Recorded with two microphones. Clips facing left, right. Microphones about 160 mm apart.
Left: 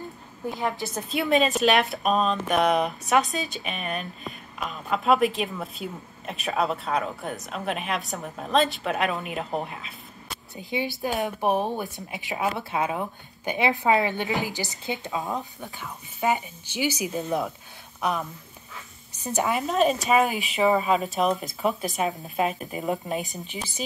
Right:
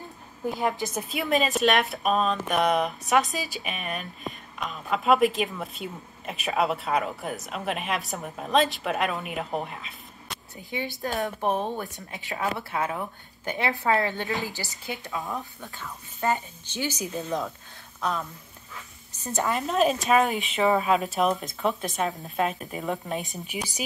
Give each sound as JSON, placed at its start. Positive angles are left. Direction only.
{"t": 0.5, "sound": "a woman's voice", "side_deg": -15}
{"t": 1.1, "sound": "speech", "side_deg": 0}
{"t": 11.0, "sound": "a woman's voice", "side_deg": 15}
{"t": 19.2, "sound": "a woman's voice", "side_deg": 10}
{"t": 19.6, "sound": "speech", "side_deg": 0}